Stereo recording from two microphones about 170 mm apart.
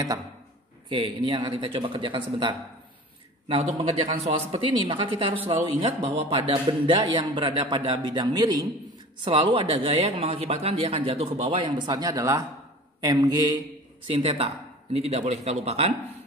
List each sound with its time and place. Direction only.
0.8 s speech: 30° right (ahead or behind)